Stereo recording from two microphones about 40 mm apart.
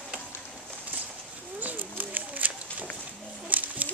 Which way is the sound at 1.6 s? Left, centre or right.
Right.